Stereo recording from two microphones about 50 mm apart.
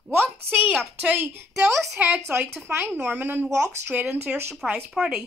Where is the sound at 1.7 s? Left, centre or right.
Right.